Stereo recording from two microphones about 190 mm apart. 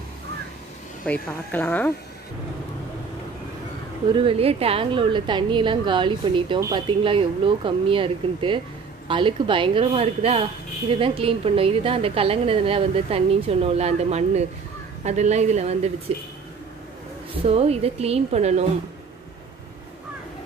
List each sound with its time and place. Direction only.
1.0 s a woman's voice: 10° left (ahead or behind)
4.1 s a woman's voice: 30° right (ahead or behind)
17.5 s a woman's voice: 30° right (ahead or behind)